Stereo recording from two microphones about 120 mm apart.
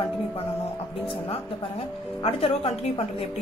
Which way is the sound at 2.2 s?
50° left (ahead or behind).